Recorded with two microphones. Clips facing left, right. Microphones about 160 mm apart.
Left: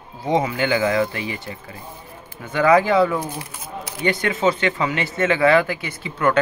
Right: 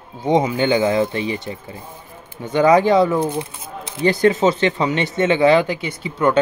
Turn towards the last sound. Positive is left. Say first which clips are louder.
# right 2 dB
turn(degrees=-20)  # may be behind; listen again after turning